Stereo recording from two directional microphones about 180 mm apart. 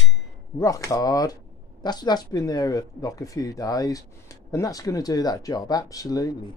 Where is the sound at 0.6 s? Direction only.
20° left (ahead or behind).